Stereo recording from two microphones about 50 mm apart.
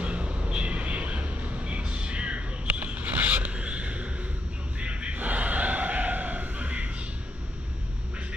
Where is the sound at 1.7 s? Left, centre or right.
Right.